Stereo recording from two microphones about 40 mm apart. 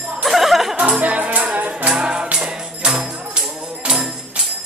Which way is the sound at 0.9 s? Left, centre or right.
Right.